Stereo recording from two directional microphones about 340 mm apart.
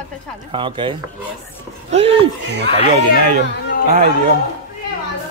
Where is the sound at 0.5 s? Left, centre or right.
Centre.